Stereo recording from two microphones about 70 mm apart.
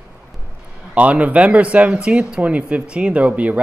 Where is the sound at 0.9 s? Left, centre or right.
Centre.